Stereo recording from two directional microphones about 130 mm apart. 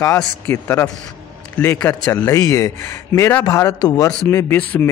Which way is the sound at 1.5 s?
10° left (ahead or behind).